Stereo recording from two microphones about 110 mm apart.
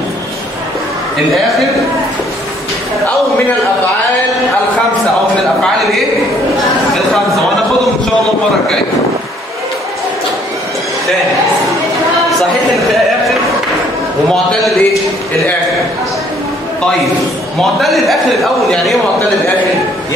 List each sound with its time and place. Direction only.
5.6 s a sound: centre (ahead or behind)
14.3 s a man's voice: centre (ahead or behind)
17.6 s a man's voice: centre (ahead or behind)